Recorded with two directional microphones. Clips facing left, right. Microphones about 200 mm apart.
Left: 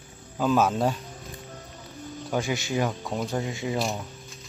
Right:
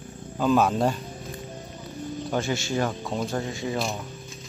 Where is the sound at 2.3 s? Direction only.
10° left (ahead or behind).